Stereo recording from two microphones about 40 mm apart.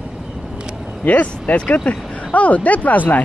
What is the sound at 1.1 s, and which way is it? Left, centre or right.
Speech, left.